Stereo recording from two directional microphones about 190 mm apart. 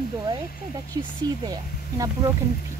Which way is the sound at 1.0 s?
20° right (ahead or behind).